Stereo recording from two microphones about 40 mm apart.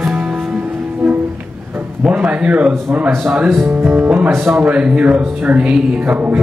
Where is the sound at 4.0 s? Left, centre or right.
Right.